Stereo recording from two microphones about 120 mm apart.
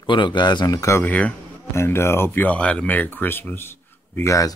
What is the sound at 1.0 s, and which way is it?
Speech, 10° left (ahead or behind).